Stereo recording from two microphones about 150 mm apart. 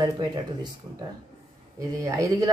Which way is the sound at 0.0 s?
30° right (ahead or behind).